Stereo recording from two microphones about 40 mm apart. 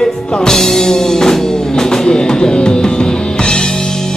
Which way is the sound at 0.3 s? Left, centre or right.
Centre.